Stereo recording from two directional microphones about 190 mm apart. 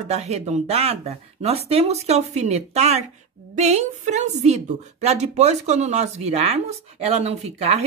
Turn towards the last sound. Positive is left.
turn(degrees=-35)  # may be behind; listen again after turning